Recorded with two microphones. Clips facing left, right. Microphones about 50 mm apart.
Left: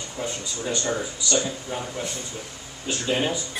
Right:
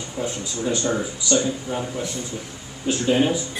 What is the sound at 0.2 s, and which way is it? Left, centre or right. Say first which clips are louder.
Speech: right 3 dB; centre.